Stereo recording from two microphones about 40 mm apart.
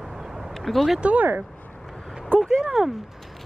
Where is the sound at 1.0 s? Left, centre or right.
Right.